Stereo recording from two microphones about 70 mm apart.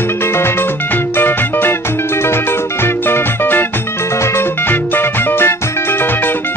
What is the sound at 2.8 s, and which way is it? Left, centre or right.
Music, left.